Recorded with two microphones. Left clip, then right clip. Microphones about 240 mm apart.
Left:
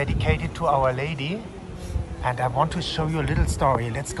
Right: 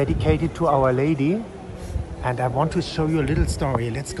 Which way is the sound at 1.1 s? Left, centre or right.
Left.